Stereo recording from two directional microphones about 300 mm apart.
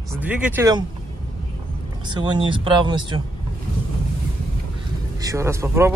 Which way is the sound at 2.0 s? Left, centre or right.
Centre.